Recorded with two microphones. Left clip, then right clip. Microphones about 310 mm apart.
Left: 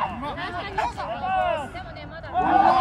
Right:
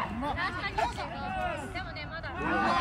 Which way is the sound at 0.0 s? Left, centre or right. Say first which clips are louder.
Left 6 dB; centre.